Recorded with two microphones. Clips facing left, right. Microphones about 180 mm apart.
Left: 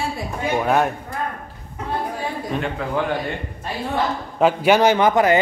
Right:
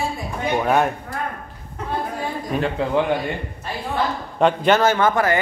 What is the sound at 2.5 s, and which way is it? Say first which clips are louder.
Speech: right 3 dB; 10° right (ahead or behind).